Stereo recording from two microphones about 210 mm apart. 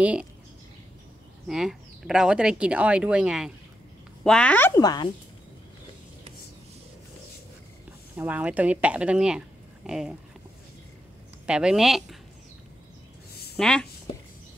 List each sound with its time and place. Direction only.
0.0 s speech: 5° right (ahead or behind)
1.5 s a woman's voice: centre (ahead or behind); by 5.1 s 20° left (ahead or behind)
8.2 s speech: 5° right (ahead or behind)
11.4 s speech: 5° right (ahead or behind)
13.6 s speech: 5° left (ahead or behind)